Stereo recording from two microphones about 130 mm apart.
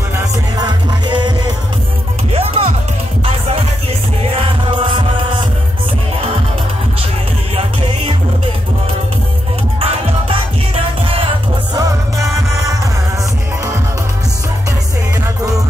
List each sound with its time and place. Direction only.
0.2 s music: 35° right (ahead or behind)
2.3 s music: 50° right (ahead or behind)
9.8 s music: 45° right (ahead or behind)
11.7 s music: 25° right (ahead or behind)